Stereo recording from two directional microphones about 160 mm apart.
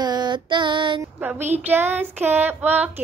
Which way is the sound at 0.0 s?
25° right (ahead or behind).